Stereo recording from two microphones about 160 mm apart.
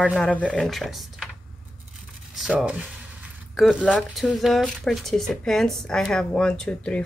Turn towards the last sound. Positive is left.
turn(degrees=5)  # may be behind; listen again after turning